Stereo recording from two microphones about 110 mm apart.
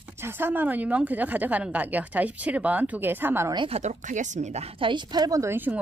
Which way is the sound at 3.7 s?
90° right.